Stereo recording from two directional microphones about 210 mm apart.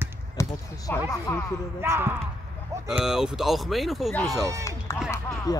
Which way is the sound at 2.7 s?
15° right (ahead or behind).